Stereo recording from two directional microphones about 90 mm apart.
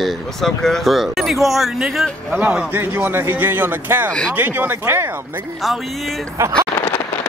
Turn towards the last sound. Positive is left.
turn(degrees=20)  # may be behind; listen again after turning